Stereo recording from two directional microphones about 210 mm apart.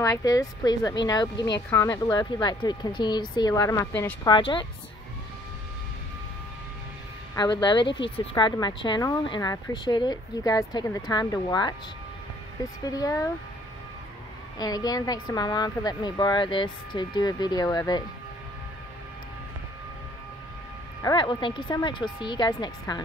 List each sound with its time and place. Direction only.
0.0 s a woman's voice: 15° left (ahead or behind)
7.3 s a woman's voice: 20° left (ahead or behind)
12.8 s speech: 15° left (ahead or behind)
14.6 s a woman's voice: 20° left (ahead or behind)
21.0 s a woman's voice: 20° left (ahead or behind)